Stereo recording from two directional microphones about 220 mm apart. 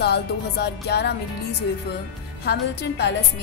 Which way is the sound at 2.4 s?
50° left (ahead or behind).